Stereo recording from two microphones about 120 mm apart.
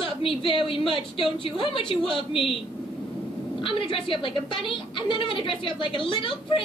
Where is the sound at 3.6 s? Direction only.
45° left (ahead or behind).